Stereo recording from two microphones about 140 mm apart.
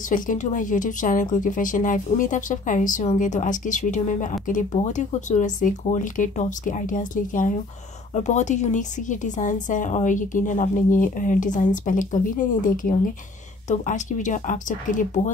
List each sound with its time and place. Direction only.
0.1 s a woman's voice: 65° left (ahead or behind)
8.1 s a woman's voice: 55° left (ahead or behind); by 13.1 s 75° left (ahead or behind)
13.7 s a woman's voice: 60° left (ahead or behind)